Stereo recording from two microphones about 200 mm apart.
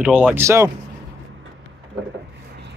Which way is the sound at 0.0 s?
5° right (ahead or behind).